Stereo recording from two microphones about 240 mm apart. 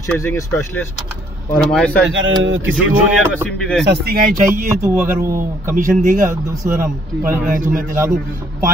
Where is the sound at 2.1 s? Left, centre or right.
Right.